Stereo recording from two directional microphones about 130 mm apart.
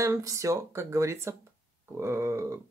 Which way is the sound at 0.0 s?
25° right (ahead or behind).